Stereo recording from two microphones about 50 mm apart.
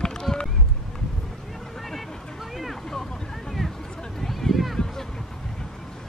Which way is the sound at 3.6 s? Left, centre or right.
Centre.